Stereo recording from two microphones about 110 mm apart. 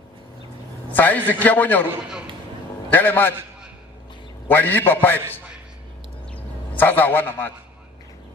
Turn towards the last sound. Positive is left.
turn(degrees=20)  # may be behind; listen again after turning